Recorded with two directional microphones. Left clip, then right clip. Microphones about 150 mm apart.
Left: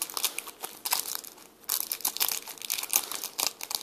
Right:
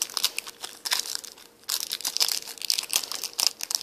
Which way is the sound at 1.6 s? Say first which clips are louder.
Right 5 dB; 5° right (ahead or behind).